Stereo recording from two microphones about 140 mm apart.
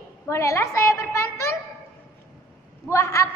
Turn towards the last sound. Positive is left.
turn(degrees=20)  # may be behind; listen again after turning